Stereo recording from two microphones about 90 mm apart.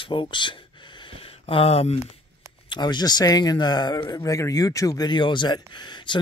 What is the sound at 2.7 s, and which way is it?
Speech, 55° left (ahead or behind).